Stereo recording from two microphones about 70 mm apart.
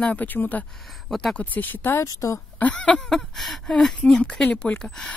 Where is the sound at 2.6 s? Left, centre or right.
Centre.